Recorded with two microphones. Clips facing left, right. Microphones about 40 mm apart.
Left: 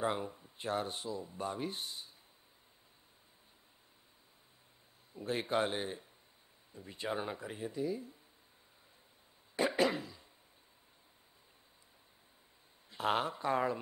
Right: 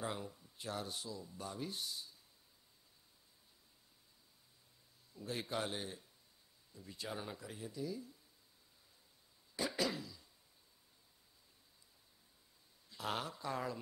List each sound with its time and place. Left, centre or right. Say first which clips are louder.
0.0 s speech: left 8 dB; left
5.1 s speech: left 7 dB; left
9.6 s cough: left 7 dB; left
12.9 s speech: left 8 dB; left